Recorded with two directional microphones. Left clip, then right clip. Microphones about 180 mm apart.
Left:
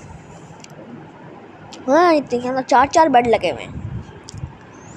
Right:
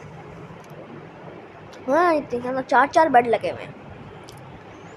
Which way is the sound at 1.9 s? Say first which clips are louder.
Left 5 dB; 20° left (ahead or behind).